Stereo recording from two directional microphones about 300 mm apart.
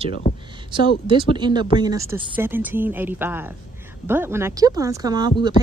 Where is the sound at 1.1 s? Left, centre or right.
Centre.